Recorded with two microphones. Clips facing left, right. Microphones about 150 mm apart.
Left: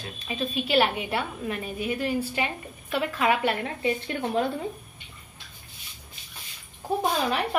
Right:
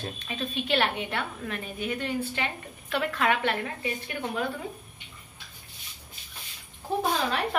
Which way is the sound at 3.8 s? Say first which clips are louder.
Left 5 dB; 30° left (ahead or behind).